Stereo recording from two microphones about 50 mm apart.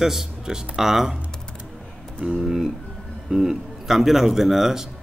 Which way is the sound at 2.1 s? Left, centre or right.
Centre.